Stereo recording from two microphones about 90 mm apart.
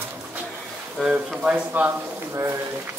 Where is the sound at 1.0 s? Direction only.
5° right (ahead or behind).